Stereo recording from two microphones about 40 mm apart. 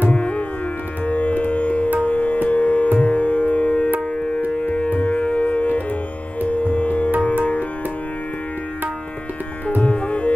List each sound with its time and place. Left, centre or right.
1.0 s music: left
9.8 s music: left